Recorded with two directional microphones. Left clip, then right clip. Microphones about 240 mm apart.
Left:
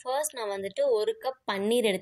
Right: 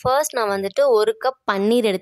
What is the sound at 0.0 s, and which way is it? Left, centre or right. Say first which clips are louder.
A woman's voice: right 12 dB; right.